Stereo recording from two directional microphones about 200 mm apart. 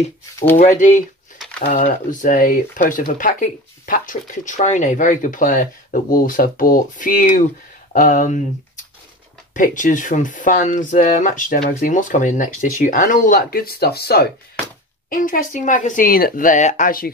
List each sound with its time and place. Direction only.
0.6 s speech: 40° left (ahead or behind)
9.5 s speech: 40° left (ahead or behind)